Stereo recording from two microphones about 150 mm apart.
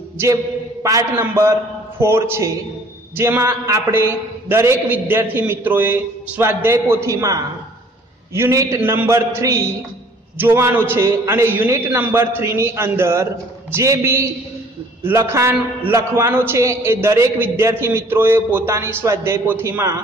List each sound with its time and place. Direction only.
0.8 s a man's voice: 20° right (ahead or behind)